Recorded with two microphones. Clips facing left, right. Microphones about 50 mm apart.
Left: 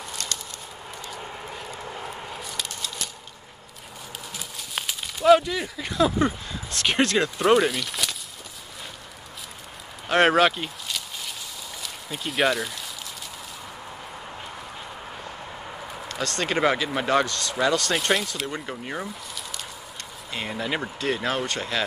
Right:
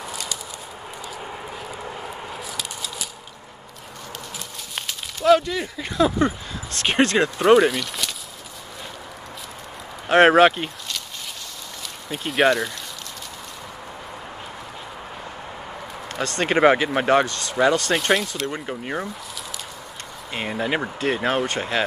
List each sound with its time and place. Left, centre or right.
0.0 s a sound: centre
4.7 s a sound: centre
6.9 s speech: centre
10.0 s speech: centre
11.8 s speech: centre
16.1 s speech: right
17.9 s speech: centre
20.3 s speech: centre